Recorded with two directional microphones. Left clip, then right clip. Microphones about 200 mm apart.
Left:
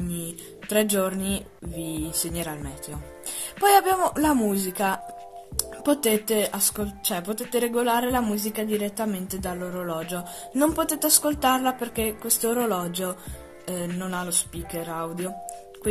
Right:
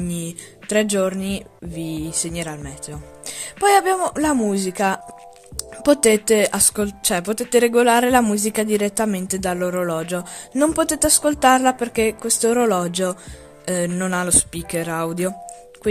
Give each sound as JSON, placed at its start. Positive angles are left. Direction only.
{"t": 0.7, "sound": "speech", "side_deg": -30}
{"t": 6.2, "sound": "speech", "side_deg": -45}